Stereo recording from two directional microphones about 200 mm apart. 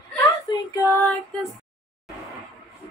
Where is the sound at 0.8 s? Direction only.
10° left (ahead or behind).